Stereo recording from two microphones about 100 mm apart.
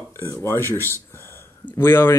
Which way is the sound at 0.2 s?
25° left (ahead or behind).